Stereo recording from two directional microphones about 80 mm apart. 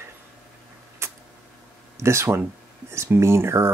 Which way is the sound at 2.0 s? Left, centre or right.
Right.